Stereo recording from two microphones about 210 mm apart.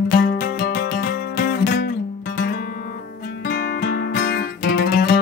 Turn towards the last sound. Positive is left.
turn(degrees=50)  # may be behind; listen again after turning